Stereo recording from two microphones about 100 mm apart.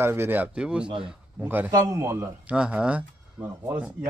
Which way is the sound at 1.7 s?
30° right (ahead or behind).